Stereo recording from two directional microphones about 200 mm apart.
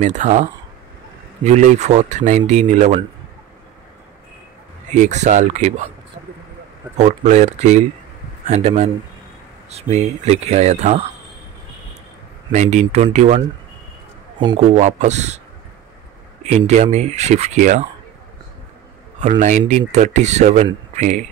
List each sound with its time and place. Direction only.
0.0 s speech: 35° right (ahead or behind)
4.9 s speech: 35° right (ahead or behind)
7.0 s speech: 35° right (ahead or behind)
12.5 s speech: 35° right (ahead or behind)
14.6 s speech: 35° right (ahead or behind)
16.4 s speech: 35° right (ahead or behind)
19.2 s a man's voice: 40° right (ahead or behind)